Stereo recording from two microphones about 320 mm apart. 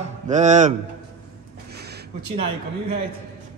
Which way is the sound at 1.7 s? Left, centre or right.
Right.